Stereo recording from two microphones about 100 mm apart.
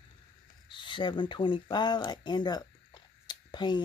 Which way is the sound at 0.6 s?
55° left (ahead or behind).